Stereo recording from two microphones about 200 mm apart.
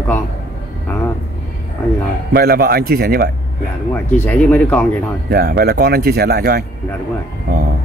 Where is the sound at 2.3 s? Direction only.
50° right (ahead or behind).